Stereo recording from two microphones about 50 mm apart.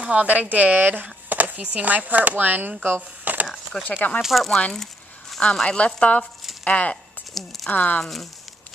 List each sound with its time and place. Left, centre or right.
0.0 s speech: right
2.8 s a sound: right
3.4 s a sound: centre
3.9 s speech: left
4.2 s speech: centre
5.4 s speech: centre
7.3 s speech: centre
7.7 s speech: left
8.0 s speech: centre